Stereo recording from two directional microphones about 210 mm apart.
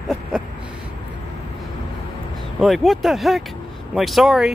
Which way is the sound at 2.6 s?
Centre (ahead or behind).